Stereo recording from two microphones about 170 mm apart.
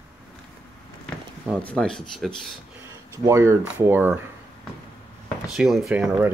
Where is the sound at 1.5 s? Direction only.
5° left (ahead or behind).